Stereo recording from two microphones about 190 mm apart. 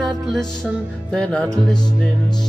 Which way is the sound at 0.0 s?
Centre (ahead or behind).